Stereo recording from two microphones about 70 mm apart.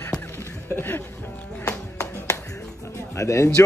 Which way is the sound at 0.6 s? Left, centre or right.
Left.